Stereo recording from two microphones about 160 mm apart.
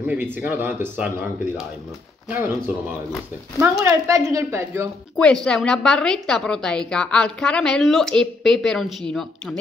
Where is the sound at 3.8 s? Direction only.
20° right (ahead or behind).